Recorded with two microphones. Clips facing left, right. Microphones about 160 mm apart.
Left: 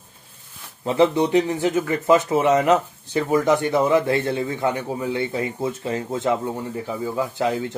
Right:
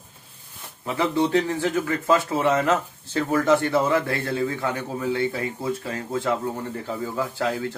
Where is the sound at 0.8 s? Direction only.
20° left (ahead or behind).